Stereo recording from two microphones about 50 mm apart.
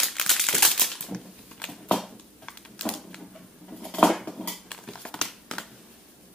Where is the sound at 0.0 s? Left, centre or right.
Centre.